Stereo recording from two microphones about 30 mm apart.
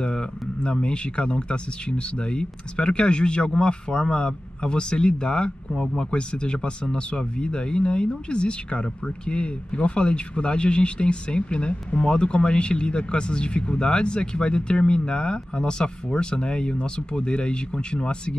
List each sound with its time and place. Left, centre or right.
0.0 s speech: left
5.8 s speech: left
6.1 s speech: left